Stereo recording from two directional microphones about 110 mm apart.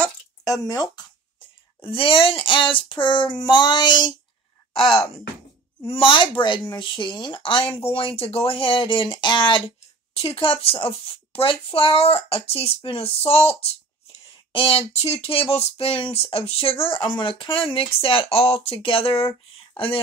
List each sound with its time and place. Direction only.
0.5 s speech: 35° left (ahead or behind)
1.8 s speech: 55° left (ahead or behind)
5.9 s speech: 50° left (ahead or behind)
10.1 s speech: 60° left (ahead or behind)